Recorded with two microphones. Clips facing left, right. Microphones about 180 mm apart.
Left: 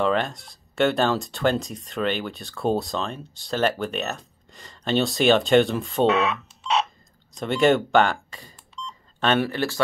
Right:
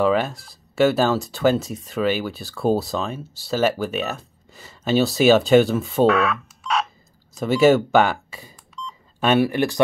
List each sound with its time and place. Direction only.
0.0 s speech: 5° right (ahead or behind)
6.0 s speech: 25° left (ahead or behind)
7.3 s speech: 5° right (ahead or behind)